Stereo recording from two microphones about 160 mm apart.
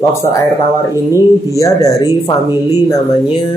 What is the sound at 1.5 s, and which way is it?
Speech, 20° left (ahead or behind).